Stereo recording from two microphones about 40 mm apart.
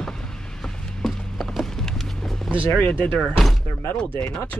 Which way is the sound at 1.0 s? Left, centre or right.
Centre.